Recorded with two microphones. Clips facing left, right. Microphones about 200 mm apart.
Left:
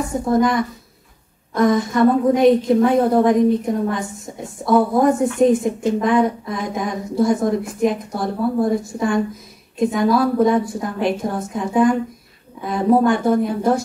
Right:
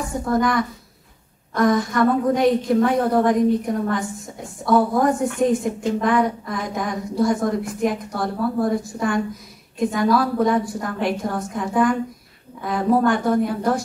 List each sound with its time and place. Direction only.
0.1 s a woman's voice: 20° left (ahead or behind)